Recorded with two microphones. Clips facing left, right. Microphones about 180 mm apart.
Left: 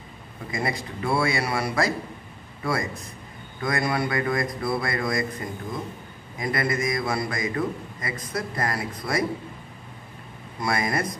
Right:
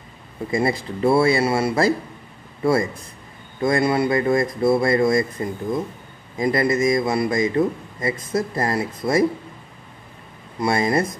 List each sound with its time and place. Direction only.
0.5 s a man's voice: 30° right (ahead or behind)
6.3 s a man's voice: 25° right (ahead or behind)
10.6 s a man's voice: 25° right (ahead or behind)